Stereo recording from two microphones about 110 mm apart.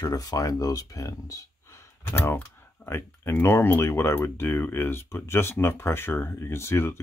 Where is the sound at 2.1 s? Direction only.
20° left (ahead or behind).